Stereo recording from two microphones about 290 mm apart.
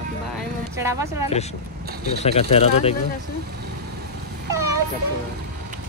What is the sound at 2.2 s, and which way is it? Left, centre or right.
Speech, left.